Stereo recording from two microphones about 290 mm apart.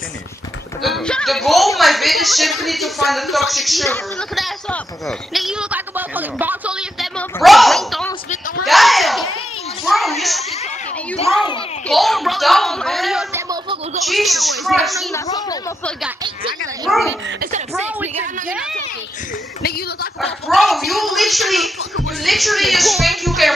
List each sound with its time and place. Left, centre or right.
0.8 s a child's voice: centre
11.9 s speech: centre
15.2 s speech: centre
16.8 s speech: centre
17.4 s speech: right
20.4 s speech: centre